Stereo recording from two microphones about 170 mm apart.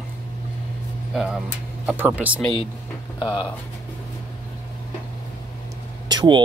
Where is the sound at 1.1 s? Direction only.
Centre (ahead or behind).